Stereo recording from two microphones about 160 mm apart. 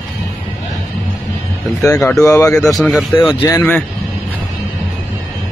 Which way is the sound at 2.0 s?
5° left (ahead or behind).